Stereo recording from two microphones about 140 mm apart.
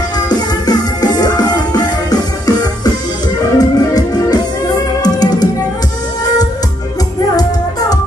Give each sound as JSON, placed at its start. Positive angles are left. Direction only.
{"t": 0.3, "sound": "music", "side_deg": 30}